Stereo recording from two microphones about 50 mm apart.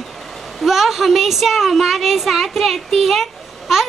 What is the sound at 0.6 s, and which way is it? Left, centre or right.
A woman's voice, centre.